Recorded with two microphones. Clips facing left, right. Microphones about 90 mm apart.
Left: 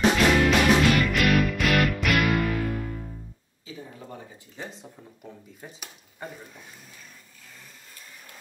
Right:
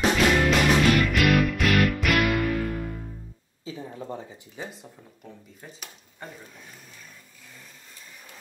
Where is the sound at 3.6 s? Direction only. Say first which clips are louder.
Right 5 dB; 25° right (ahead or behind).